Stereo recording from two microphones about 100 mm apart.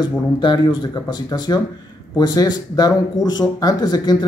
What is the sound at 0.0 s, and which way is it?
Speech, 50° left (ahead or behind).